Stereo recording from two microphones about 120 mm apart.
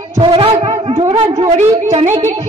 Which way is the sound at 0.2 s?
50° right (ahead or behind).